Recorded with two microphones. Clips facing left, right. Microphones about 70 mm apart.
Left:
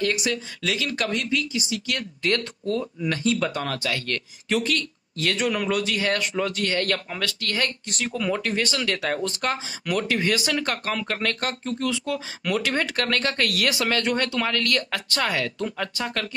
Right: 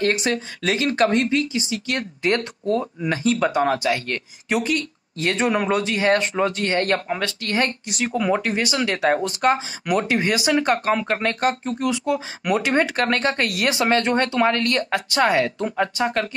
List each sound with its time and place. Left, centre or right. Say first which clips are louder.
0.0 s speech: right 4 dB; right
3.3 s speech: right 7 dB; right